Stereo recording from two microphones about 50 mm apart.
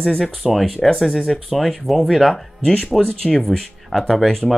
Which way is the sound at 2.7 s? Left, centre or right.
Centre.